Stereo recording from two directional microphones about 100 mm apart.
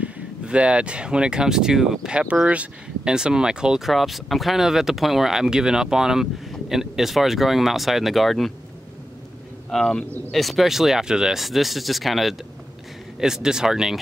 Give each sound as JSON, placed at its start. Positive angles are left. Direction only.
{"t": 0.0, "sound": "speech", "side_deg": -10}
{"t": 9.7, "sound": "speech", "side_deg": 5}